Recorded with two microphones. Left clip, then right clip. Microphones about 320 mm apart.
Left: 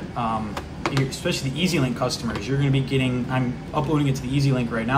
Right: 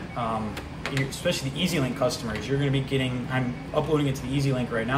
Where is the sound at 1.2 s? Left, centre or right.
Centre.